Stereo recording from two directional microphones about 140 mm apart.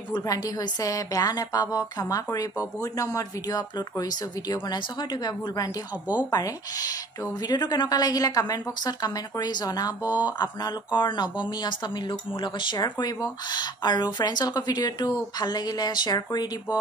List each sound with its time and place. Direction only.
0.1 s a woman's voice: 25° left (ahead or behind)